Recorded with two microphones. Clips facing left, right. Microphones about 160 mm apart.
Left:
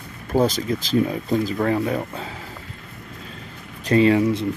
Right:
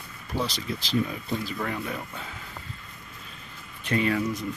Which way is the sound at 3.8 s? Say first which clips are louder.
Left 9 dB; 30° left (ahead or behind).